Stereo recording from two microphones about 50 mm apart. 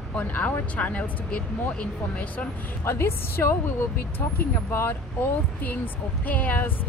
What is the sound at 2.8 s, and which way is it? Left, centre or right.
A woman's voice, left.